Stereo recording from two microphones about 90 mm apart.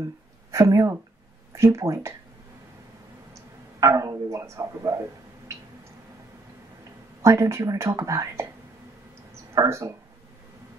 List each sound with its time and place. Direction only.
0.5 s speech: 35° right (ahead or behind)
3.8 s speech: 40° right (ahead or behind)
7.2 s speech: 35° right (ahead or behind)
9.6 s speech: 35° right (ahead or behind)